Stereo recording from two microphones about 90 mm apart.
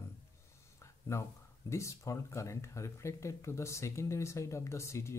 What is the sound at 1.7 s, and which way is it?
Speech, 35° left (ahead or behind).